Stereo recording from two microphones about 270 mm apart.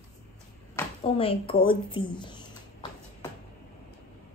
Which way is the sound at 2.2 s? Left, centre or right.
Centre.